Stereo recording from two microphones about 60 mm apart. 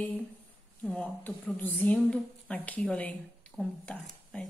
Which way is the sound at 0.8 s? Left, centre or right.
Centre.